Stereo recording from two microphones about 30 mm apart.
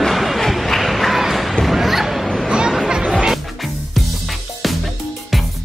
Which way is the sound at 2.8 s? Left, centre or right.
Right.